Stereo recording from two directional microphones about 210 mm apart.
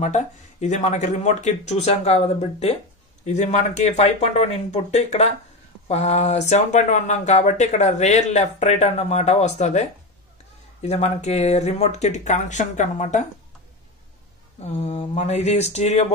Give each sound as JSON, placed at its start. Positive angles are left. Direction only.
{"t": 0.0, "sound": "speech", "side_deg": 35}
{"t": 14.6, "sound": "speech", "side_deg": 30}